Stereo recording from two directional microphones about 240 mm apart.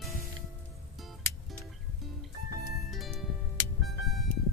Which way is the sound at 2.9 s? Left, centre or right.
Centre.